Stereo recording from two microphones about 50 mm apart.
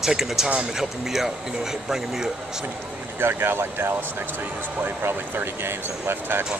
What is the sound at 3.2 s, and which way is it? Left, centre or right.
Speech, right.